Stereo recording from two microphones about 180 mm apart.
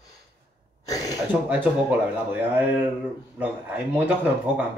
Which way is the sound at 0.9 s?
20° left (ahead or behind).